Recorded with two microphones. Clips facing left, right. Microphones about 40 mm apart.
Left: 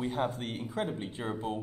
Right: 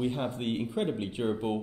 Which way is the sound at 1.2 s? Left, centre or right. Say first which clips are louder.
Right 7 dB; centre.